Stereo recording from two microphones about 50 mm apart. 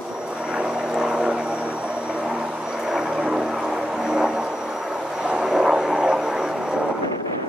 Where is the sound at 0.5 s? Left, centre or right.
Centre.